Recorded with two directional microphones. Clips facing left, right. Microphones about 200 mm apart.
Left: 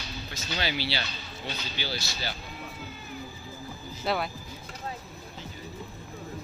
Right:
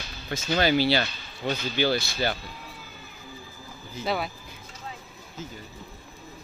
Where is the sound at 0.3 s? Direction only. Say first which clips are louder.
Right 10 dB; 50° right (ahead or behind).